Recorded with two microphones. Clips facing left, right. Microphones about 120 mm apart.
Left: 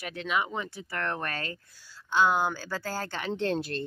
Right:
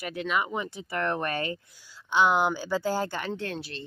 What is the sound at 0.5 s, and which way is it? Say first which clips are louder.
Speech: right 3 dB; 15° right (ahead or behind).